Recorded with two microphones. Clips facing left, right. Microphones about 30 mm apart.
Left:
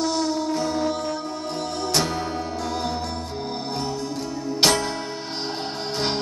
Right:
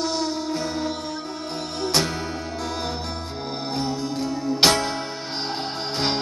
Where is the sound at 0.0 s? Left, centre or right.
Centre.